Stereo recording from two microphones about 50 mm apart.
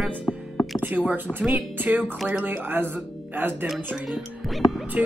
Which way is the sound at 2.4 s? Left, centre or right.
Right.